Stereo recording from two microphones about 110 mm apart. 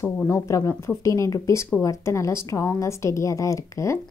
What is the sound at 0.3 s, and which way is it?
A woman's voice, 30° left (ahead or behind).